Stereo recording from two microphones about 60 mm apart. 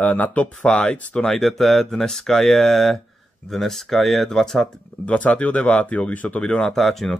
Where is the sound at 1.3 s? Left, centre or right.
Centre.